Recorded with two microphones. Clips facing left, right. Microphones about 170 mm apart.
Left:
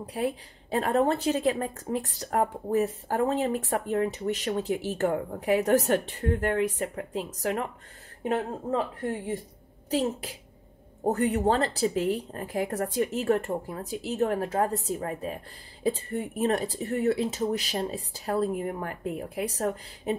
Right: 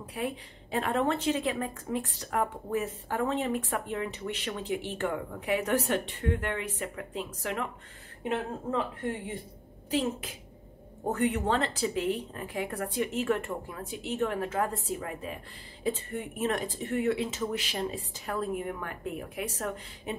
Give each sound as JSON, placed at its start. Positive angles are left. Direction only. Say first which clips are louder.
{"t": 0.1, "sound": "a woman's voice", "louder": "left 4 dB", "side_deg": 35}